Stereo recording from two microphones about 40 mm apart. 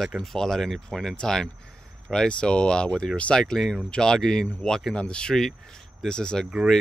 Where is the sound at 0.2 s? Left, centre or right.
Centre.